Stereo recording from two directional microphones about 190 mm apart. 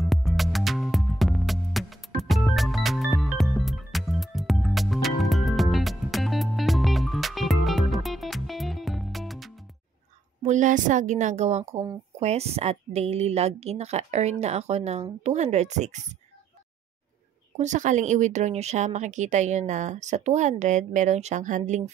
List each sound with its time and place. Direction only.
0.0 s music: centre (ahead or behind)
10.4 s a woman's voice: 40° right (ahead or behind)
17.6 s a woman's voice: 40° right (ahead or behind)